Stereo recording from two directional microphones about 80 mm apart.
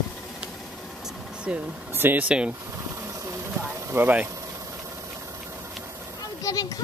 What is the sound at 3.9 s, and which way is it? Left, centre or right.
Speech, right.